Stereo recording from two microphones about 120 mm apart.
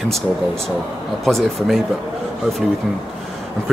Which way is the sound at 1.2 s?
Centre (ahead or behind).